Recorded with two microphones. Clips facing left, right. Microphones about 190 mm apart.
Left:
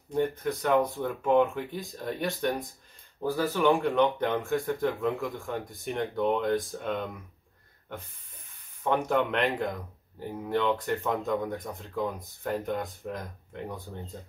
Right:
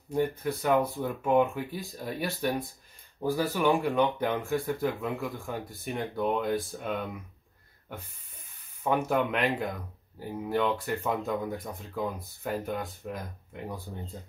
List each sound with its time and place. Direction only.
0.1 s speech: centre (ahead or behind)
3.3 s speech: 15° right (ahead or behind)
3.8 s speech: centre (ahead or behind)
8.8 s speech: centre (ahead or behind)